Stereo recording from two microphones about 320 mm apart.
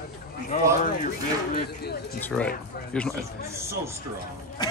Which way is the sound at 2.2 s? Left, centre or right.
Centre.